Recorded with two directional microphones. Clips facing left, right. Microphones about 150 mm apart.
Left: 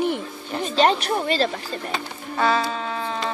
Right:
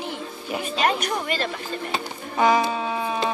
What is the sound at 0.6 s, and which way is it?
Speech, 30° left (ahead or behind).